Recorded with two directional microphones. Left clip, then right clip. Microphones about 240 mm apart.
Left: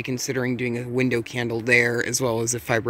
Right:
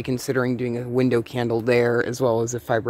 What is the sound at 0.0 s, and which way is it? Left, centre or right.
Speech, centre.